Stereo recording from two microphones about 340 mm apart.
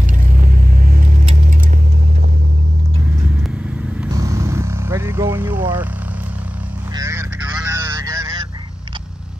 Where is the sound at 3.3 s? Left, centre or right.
Centre.